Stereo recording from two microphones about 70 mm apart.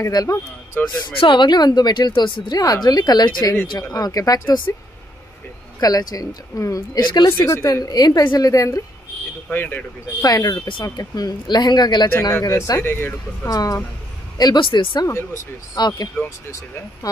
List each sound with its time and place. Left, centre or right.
0.1 s a woman's voice: left
1.0 s speech: left
3.7 s a woman's voice: left
5.8 s a woman's voice: left
7.2 s speech: left
7.6 s a woman's voice: left
9.5 s speech: left
10.2 s speech: left
12.2 s speech: left
13.5 s a woman's voice: left
14.4 s speech: left
15.0 s speech: left
15.8 s speech: left
16.4 s speech: left